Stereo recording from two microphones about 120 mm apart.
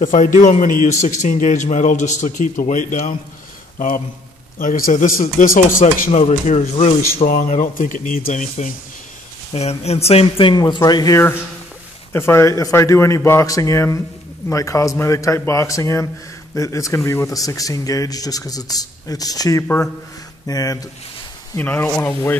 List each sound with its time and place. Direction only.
0.1 s a man's voice: 90° left
4.6 s a man's voice: 80° left
9.5 s speech: 60° left (ahead or behind); by 11.1 s 30° left (ahead or behind)
12.1 s speech: 20° left (ahead or behind)
21.5 s speech: 15° left (ahead or behind)